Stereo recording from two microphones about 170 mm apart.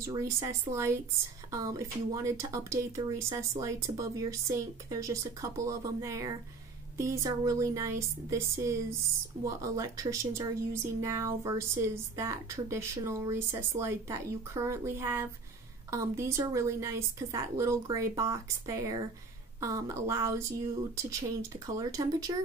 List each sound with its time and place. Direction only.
0.0 s speech: 15° right (ahead or behind)